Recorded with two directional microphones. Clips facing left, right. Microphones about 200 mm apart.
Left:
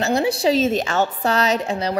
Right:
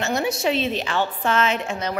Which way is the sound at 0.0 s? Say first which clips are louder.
Left 4 dB; 30° left (ahead or behind).